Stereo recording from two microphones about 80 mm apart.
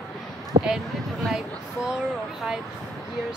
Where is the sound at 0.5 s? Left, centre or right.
Right.